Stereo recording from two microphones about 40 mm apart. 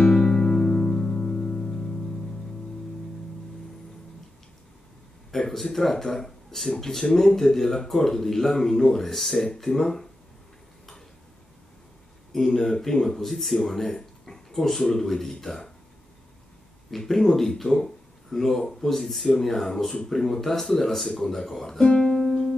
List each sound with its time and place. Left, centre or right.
0.0 s music: centre
5.3 s speech: centre
12.3 s speech: centre
16.9 s speech: centre